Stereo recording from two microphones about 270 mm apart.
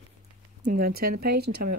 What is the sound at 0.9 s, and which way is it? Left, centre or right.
Speech, right.